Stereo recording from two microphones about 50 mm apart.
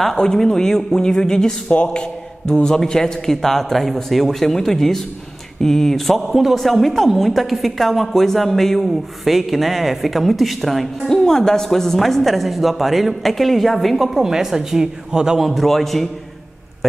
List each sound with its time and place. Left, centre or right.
0.2 s a man's voice: centre
1.7 s a man's voice: left
2.4 s a man's voice: centre
15.4 s speech: centre